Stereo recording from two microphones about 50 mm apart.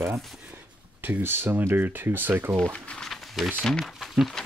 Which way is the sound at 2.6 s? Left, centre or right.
Centre.